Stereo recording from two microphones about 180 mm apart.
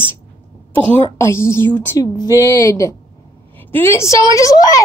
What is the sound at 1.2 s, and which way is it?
A woman's voice, 15° left (ahead or behind).